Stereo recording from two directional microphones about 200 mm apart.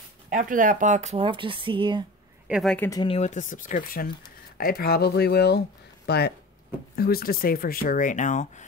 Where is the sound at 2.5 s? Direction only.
Centre (ahead or behind).